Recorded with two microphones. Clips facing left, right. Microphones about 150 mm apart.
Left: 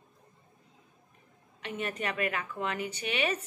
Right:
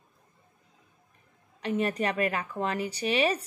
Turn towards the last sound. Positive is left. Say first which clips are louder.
# right 5 dB
turn(degrees=-35)  # may be behind; listen again after turning